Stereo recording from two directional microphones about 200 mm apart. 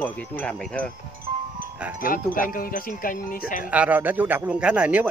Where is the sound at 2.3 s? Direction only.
45° left (ahead or behind).